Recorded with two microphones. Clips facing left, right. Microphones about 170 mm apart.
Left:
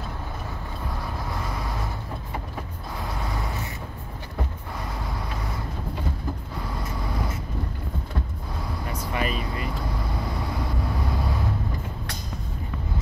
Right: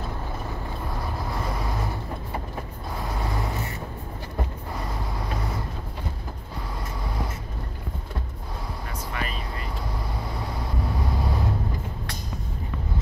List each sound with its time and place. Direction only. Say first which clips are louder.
9.1 s vehicle: left 6 dB; 15° left (ahead or behind)